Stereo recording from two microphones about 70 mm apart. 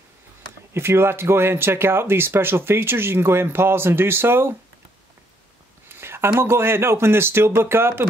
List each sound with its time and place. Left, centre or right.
0.7 s speech: right
5.9 s a sound: right
6.4 s speech: right